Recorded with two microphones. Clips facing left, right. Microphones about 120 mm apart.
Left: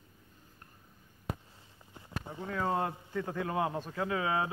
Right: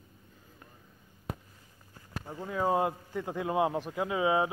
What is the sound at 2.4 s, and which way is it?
A man's voice, 20° right (ahead or behind).